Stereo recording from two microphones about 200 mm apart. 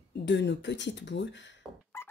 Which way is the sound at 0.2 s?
60° left (ahead or behind).